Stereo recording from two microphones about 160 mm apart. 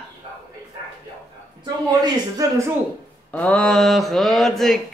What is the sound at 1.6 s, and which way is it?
Speech, 25° right (ahead or behind).